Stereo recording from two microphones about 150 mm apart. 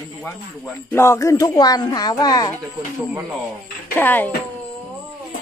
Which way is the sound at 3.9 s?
15° left (ahead or behind).